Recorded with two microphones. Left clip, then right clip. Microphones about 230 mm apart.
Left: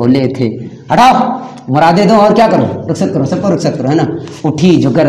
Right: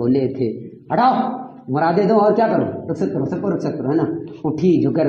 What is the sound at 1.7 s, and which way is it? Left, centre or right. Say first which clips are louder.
Speech: left 8 dB; left.